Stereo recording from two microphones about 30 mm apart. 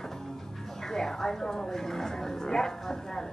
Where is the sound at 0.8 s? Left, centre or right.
Centre.